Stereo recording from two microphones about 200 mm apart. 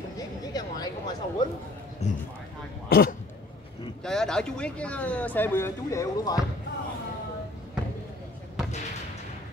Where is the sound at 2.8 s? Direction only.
50° left (ahead or behind).